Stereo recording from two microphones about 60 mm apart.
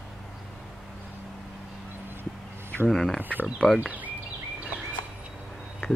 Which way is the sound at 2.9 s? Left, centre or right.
Centre.